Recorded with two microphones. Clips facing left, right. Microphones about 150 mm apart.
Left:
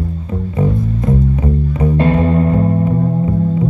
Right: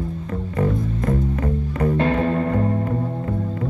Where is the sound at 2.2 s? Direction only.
25° left (ahead or behind).